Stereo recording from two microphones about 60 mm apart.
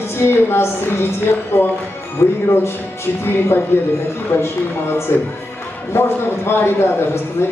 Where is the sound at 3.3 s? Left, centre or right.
Left.